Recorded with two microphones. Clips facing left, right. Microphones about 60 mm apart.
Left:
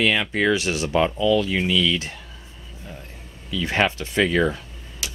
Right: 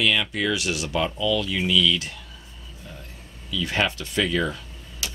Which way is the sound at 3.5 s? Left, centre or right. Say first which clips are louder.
Left 3 dB; left.